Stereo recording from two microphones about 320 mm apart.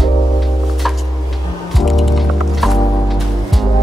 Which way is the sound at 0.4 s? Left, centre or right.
Centre.